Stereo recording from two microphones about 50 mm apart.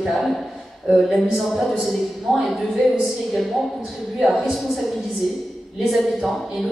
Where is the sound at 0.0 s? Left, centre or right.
Centre.